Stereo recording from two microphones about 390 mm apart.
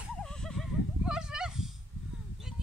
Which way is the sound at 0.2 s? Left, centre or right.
Centre.